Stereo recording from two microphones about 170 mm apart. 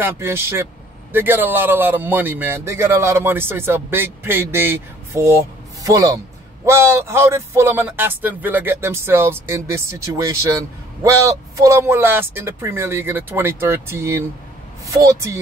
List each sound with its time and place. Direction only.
0.0 s a man's voice: 15° right (ahead or behind)